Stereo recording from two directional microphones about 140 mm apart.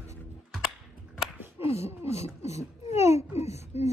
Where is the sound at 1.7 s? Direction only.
50° left (ahead or behind).